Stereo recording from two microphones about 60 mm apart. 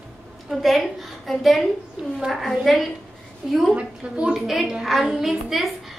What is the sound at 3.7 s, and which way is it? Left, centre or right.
Speech, centre.